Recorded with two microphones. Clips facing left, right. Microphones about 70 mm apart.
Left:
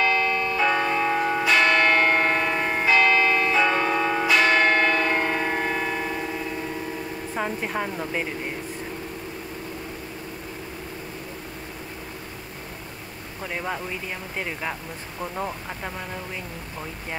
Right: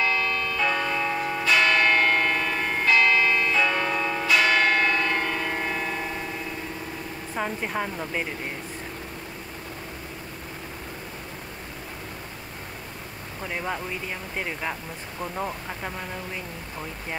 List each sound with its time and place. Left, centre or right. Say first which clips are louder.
0.6 s church bell: left 3 dB; centre
7.3 s a woman's voice: left 1 dB; centre
13.4 s a woman's voice: left 1 dB; centre